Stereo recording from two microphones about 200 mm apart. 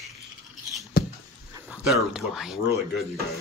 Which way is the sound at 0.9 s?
50° left (ahead or behind).